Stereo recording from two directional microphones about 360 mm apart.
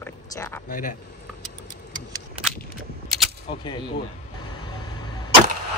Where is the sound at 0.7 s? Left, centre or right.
Left.